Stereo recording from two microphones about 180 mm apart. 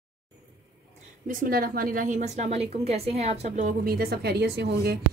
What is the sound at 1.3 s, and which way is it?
A woman's voice, 55° right (ahead or behind).